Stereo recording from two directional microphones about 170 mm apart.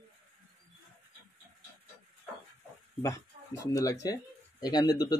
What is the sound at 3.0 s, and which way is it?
Speech, 20° left (ahead or behind).